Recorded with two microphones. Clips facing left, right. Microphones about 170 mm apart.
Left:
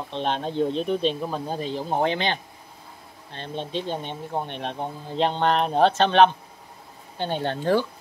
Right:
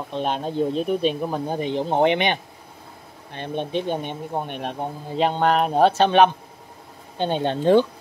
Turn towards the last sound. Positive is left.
turn(degrees=-20)  # may be behind; listen again after turning